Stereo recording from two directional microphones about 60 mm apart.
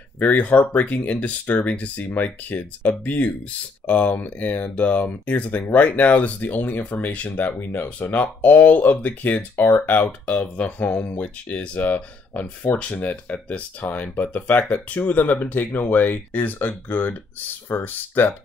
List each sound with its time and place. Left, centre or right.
0.2 s speech: left